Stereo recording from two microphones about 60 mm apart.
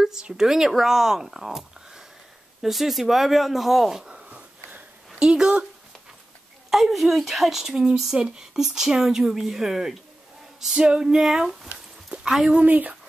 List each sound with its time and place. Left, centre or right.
0.0 s speech: centre
6.7 s speech: centre
12.1 s a sound: centre
12.5 s speech: right